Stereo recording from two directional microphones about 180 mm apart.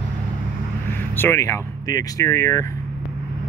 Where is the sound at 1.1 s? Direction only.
15° left (ahead or behind).